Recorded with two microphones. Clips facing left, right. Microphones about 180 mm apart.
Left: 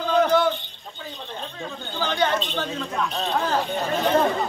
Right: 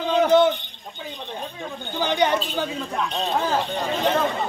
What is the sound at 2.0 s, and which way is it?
Speech, 15° right (ahead or behind).